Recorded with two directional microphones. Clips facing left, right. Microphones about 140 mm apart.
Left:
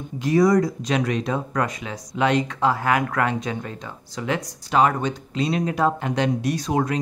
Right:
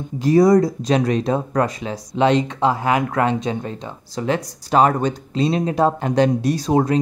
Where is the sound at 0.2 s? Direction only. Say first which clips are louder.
Right 4 dB; 35° right (ahead or behind).